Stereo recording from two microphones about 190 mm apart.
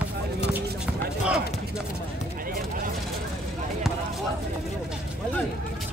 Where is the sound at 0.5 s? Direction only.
5° right (ahead or behind).